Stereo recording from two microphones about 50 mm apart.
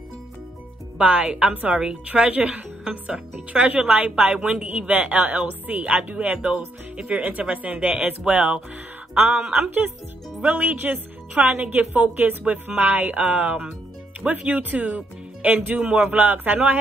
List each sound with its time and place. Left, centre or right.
0.9 s a woman's voice: right
9.6 s a woman's voice: right